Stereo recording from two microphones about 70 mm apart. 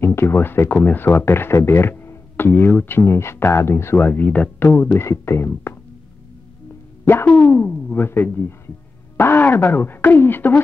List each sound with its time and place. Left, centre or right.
0.0 s speech: left
4.9 s speech: left
7.1 s speech: left